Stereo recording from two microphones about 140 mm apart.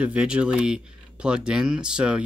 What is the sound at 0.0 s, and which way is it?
Speech, 5° right (ahead or behind).